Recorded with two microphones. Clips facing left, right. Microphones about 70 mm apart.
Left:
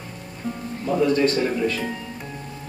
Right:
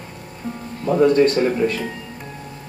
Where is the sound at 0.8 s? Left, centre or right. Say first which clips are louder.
Right 5 dB; right.